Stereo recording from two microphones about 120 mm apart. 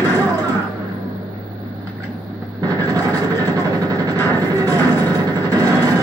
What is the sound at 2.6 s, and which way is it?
Vehicle, 35° right (ahead or behind).